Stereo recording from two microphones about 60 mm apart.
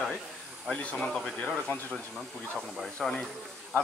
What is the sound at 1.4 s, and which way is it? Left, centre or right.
Speech, left.